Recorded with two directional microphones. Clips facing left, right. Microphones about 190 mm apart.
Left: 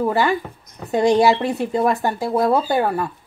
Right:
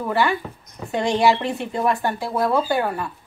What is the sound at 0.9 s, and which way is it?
Speech, 40° left (ahead or behind).